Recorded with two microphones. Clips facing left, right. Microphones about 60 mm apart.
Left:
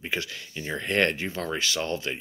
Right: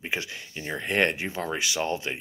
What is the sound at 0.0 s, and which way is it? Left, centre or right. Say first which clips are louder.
Speech: even; right.